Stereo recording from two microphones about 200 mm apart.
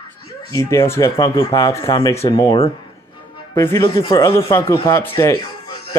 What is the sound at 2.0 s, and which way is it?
Speech, 25° left (ahead or behind).